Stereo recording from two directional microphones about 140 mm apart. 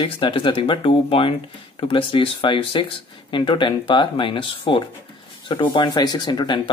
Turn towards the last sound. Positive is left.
turn(degrees=30)  # may be behind; listen again after turning